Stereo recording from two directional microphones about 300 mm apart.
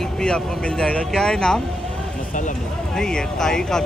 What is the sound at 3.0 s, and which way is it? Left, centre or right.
Speech, centre.